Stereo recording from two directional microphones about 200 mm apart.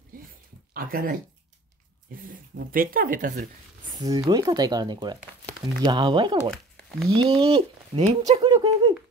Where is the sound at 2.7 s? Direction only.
45° right (ahead or behind).